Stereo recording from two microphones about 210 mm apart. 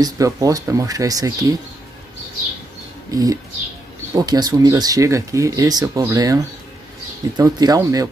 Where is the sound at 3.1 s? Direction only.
15° right (ahead or behind).